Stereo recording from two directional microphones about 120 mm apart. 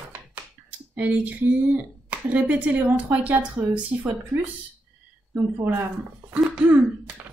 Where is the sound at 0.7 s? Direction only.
15° right (ahead or behind).